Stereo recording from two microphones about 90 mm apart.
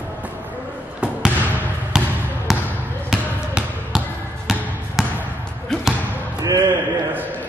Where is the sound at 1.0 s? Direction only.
15° right (ahead or behind).